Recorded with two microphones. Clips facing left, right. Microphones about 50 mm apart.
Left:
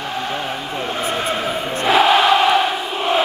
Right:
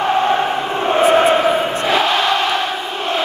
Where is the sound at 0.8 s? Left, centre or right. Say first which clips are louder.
Right 11 dB; right.